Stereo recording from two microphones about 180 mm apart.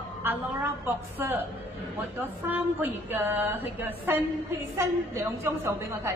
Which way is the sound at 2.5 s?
10° right (ahead or behind).